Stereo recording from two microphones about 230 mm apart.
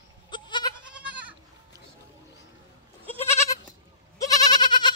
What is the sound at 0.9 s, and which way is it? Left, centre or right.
Goat, centre.